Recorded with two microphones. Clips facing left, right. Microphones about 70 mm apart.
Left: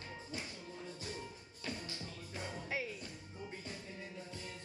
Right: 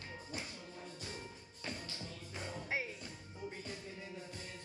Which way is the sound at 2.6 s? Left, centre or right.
Right.